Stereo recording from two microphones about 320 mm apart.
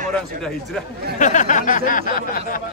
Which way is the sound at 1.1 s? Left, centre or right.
Left.